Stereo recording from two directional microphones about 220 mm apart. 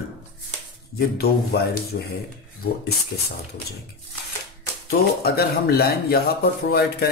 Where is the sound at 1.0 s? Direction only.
45° left (ahead or behind).